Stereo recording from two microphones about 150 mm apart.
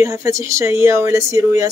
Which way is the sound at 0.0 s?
20° right (ahead or behind).